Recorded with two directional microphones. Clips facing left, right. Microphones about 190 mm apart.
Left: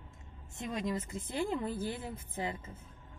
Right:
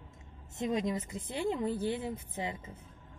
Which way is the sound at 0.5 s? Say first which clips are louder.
Right 4 dB; 20° right (ahead or behind).